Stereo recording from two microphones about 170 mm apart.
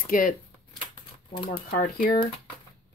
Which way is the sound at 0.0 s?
55° left (ahead or behind).